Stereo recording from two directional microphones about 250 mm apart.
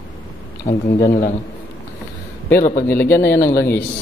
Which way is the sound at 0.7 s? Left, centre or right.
Left.